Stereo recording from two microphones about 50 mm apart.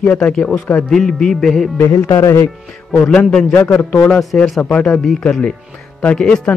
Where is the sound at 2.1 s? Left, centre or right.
Left.